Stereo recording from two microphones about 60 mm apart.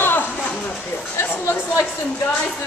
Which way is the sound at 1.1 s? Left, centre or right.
Left.